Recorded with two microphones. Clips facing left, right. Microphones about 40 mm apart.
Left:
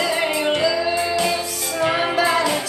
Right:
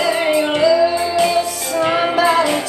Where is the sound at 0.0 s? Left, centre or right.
Centre.